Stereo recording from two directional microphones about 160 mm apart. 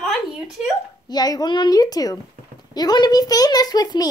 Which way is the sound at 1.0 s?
25° left (ahead or behind).